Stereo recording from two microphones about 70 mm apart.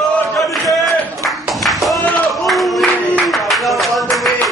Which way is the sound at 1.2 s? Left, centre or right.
Centre.